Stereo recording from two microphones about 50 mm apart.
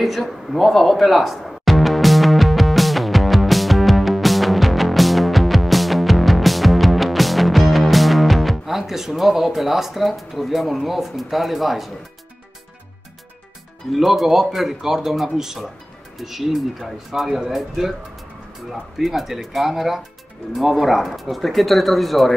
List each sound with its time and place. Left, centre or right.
0.0 s music: centre
13.9 s speech: centre